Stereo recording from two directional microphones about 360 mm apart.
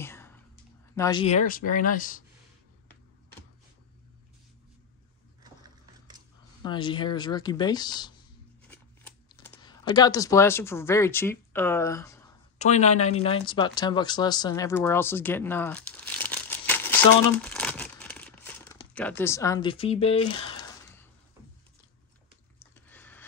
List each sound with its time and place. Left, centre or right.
0.0 s whispering: centre
0.9 s speech: centre
6.6 s speech: centre
8.6 s computer keyboard: centre
12.5 s speech: centre
22.6 s a sound: centre